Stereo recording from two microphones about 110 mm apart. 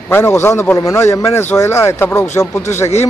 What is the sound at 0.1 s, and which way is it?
Speech, 20° left (ahead or behind).